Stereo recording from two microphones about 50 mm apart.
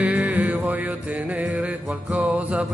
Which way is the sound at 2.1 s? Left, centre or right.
Right.